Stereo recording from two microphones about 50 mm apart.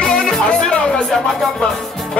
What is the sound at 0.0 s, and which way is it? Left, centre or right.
Music, centre.